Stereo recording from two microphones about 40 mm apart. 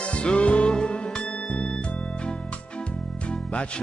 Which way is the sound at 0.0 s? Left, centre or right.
Left.